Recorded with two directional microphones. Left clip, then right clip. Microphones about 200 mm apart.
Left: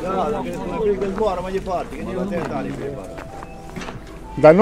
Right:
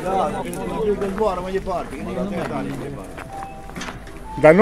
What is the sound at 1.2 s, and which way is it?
Speech, 60° right (ahead or behind).